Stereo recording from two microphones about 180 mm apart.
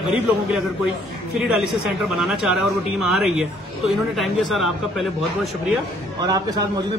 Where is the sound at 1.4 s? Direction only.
Centre (ahead or behind).